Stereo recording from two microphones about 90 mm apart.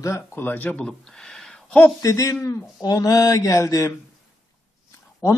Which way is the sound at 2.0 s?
35° left (ahead or behind).